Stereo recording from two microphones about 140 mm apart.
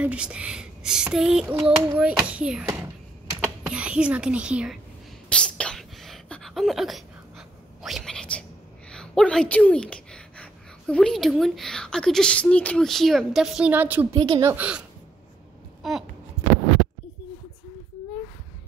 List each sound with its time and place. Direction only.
0.0 s speech: 10° right (ahead or behind)
1.6 s speech: 15° right (ahead or behind)
3.6 s speech: 10° right (ahead or behind)
5.3 s a sound: 5° left (ahead or behind)
8.9 s speech: 5° left (ahead or behind); by 14.0 s 15° right (ahead or behind)
14.1 s a woman's voice: 40° right (ahead or behind)
14.4 s speech: 15° right (ahead or behind)
15.8 s speech: centre (ahead or behind)